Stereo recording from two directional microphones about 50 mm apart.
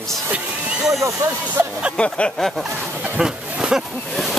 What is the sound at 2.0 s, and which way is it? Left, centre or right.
Speech, left.